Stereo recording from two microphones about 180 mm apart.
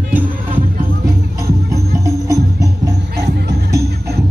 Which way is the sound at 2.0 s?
20° right (ahead or behind).